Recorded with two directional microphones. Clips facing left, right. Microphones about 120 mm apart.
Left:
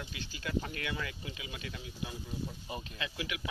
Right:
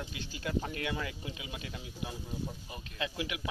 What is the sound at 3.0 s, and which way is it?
Speech, 25° right (ahead or behind).